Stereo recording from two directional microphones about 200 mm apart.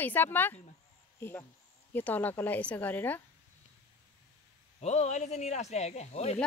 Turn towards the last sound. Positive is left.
turn(degrees=35)  # may be behind; listen again after turning